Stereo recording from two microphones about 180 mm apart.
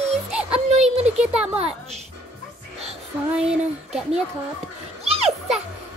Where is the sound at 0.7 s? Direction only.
35° right (ahead or behind).